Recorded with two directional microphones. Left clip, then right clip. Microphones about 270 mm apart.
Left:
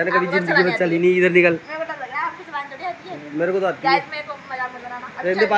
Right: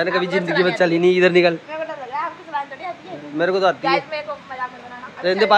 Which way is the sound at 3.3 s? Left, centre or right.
Centre.